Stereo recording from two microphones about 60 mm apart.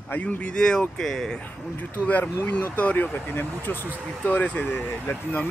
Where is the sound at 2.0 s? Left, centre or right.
Left.